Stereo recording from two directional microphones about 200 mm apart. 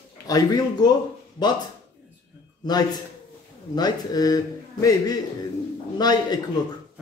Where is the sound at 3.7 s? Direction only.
20° left (ahead or behind).